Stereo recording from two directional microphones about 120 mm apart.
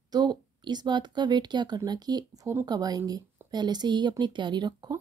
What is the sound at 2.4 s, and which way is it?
Speech, 20° right (ahead or behind).